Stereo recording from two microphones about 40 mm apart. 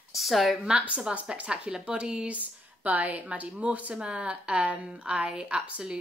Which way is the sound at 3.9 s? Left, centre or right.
Right.